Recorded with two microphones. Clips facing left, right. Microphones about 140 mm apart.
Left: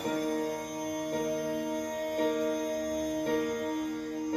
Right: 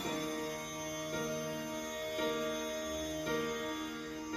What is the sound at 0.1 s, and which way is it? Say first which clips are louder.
Music: left 10 dB; 50° left (ahead or behind).